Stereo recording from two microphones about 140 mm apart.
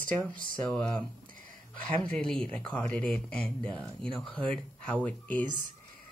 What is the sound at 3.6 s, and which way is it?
Speech, 40° right (ahead or behind).